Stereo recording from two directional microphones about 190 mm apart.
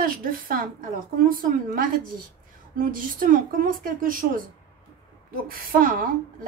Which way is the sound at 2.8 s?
45° right (ahead or behind).